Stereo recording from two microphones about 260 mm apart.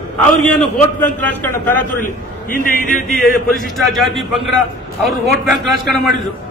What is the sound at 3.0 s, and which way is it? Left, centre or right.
A man's voice, centre.